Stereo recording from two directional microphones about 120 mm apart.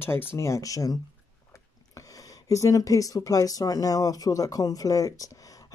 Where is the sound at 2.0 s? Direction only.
30° left (ahead or behind).